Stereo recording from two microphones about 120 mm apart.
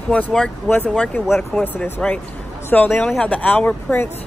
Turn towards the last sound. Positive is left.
turn(degrees=15)  # may be behind; listen again after turning